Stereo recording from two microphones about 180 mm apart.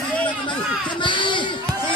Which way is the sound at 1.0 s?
25° left (ahead or behind).